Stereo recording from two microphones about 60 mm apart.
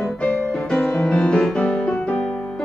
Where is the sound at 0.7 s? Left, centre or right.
Centre.